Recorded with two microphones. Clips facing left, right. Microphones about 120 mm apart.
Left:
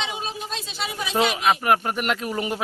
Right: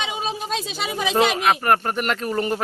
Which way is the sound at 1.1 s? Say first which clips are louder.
Right 1 dB; 5° left (ahead or behind).